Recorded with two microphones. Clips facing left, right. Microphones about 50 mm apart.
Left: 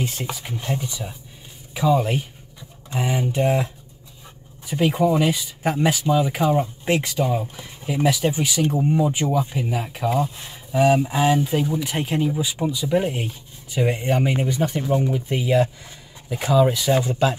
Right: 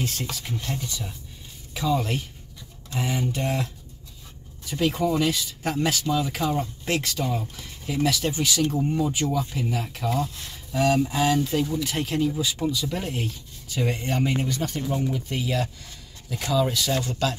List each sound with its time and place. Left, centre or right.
0.0 s speech: centre